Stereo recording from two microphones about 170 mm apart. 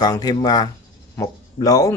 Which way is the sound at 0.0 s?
20° left (ahead or behind).